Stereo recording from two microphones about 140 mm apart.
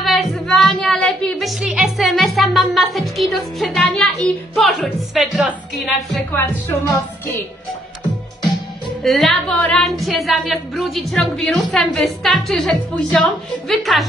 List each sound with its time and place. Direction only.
0.0 s a sound: centre (ahead or behind)
6.3 s speech: 20° left (ahead or behind)
9.0 s a woman's voice: centre (ahead or behind)